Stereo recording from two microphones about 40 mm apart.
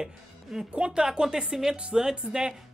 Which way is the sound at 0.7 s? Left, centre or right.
Right.